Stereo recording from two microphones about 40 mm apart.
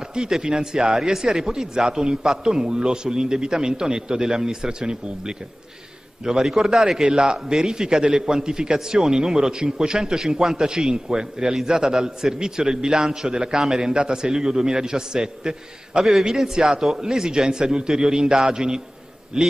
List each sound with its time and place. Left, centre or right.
0.1 s a man's voice: centre
6.4 s a man's voice: centre